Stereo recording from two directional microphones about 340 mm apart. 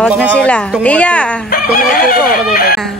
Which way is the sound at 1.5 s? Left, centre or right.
Left.